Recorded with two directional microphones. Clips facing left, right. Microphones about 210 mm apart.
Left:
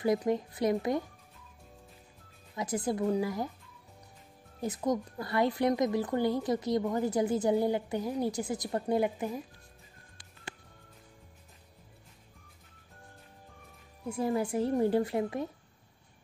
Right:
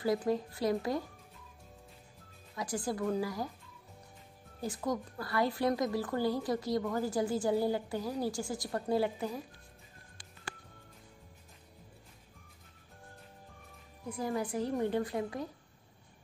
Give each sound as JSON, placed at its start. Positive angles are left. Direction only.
{"t": 0.0, "sound": "a woman's voice", "side_deg": 20}
{"t": 2.5, "sound": "a woman's voice", "side_deg": 20}
{"t": 4.6, "sound": "a woman's voice", "side_deg": 20}
{"t": 14.0, "sound": "a woman's voice", "side_deg": 25}